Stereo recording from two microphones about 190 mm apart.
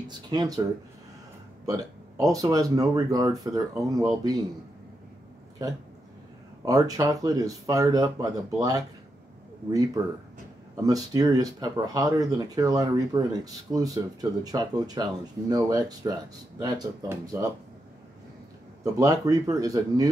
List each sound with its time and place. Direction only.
0.3 s speech: 20° right (ahead or behind)
1.7 s speech: 20° right (ahead or behind)
6.6 s speech: 20° right (ahead or behind)
18.9 s speech: 20° right (ahead or behind)